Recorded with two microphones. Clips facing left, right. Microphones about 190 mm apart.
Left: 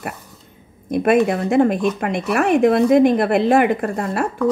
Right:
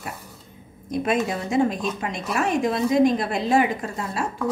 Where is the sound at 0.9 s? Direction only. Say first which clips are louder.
Left 8 dB; 60° left (ahead or behind).